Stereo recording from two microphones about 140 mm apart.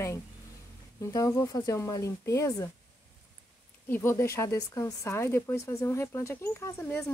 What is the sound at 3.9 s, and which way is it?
Speech, 15° left (ahead or behind).